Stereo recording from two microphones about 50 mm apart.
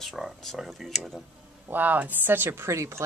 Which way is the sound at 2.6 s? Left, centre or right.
Right.